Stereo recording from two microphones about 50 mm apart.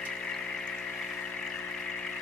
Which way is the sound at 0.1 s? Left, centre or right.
Centre.